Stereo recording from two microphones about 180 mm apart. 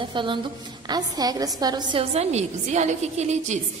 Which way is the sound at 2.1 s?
40° right (ahead or behind).